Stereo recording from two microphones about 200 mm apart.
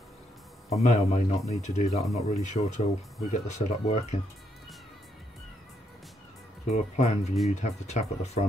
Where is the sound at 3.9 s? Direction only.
30° left (ahead or behind).